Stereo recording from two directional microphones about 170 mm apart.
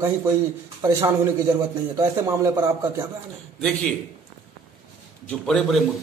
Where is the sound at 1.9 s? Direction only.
20° right (ahead or behind).